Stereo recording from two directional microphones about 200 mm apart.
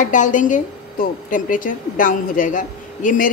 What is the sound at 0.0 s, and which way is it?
A woman's voice, 40° left (ahead or behind).